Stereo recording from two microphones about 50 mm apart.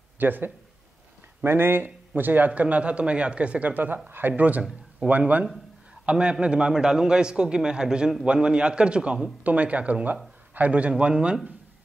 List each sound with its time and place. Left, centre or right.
0.2 s speech: right
6.0 s a man's voice: right